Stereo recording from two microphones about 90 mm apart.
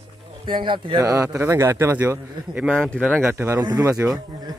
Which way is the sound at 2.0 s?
20° right (ahead or behind).